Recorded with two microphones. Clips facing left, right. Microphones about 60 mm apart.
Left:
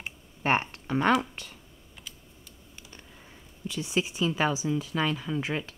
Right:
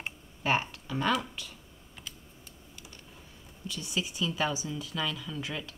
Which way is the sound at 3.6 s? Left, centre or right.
Left.